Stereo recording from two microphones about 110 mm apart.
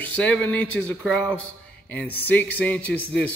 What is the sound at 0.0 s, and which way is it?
Speech, 15° left (ahead or behind).